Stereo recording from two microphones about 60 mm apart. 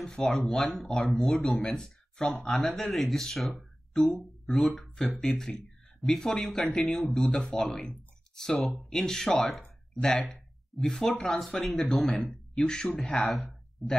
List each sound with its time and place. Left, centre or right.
0.0 s speech: centre
11.3 s speech: centre
13.3 s speech: centre